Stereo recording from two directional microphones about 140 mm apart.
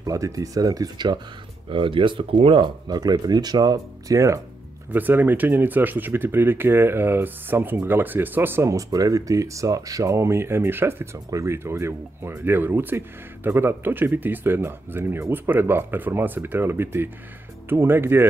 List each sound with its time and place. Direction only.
0.0 s speech: 25° right (ahead or behind)